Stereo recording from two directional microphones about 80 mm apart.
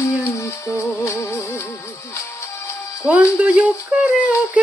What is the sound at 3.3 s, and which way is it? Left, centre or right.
Female singing, centre.